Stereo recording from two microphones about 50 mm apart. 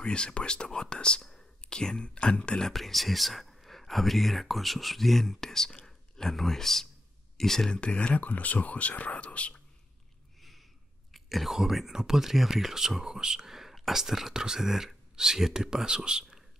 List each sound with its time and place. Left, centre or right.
0.0 s speech: centre
2.7 s speech: centre
7.8 s speech: left
8.2 s speech: left
11.1 s speech: centre